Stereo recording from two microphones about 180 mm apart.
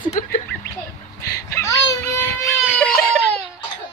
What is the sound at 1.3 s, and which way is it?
Baby cry, 15° left (ahead or behind).